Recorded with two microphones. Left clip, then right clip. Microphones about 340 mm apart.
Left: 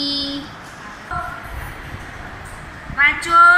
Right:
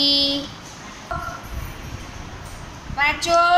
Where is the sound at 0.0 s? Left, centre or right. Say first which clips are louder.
Right 5 dB; centre.